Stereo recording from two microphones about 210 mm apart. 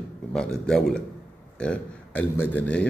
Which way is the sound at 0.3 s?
5° left (ahead or behind).